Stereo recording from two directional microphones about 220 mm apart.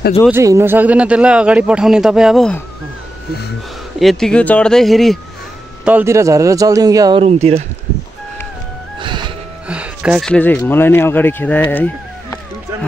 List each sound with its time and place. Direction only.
0.3 s a man's voice: 10° right (ahead or behind)
4.0 s a man's voice: centre (ahead or behind)
5.9 s speech: 10° right (ahead or behind)
7.2 s speech: 30° right (ahead or behind)
9.0 s music: 20° right (ahead or behind)
9.7 s speech: 5° right (ahead or behind)
11.7 s chicken: 10° left (ahead or behind)